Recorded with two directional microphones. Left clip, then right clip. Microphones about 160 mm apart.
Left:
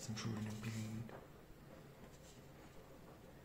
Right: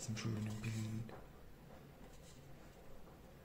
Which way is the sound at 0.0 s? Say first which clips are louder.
Right 1 dB; 25° right (ahead or behind).